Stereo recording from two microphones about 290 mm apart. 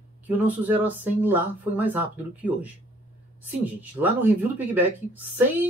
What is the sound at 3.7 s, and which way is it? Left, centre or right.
Speech, centre.